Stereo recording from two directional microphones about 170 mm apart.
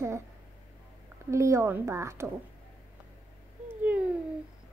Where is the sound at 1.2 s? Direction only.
15° right (ahead or behind).